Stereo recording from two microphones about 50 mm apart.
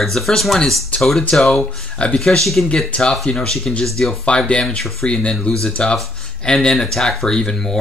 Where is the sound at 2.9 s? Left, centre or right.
Left.